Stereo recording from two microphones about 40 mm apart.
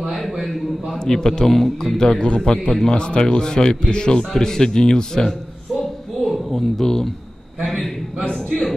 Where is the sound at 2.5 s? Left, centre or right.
Left.